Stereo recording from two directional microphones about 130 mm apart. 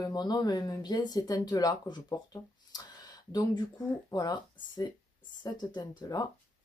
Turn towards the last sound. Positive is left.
turn(degrees=35)  # may be behind; listen again after turning